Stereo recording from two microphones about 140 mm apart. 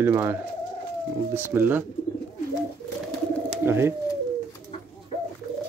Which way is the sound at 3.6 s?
15° right (ahead or behind).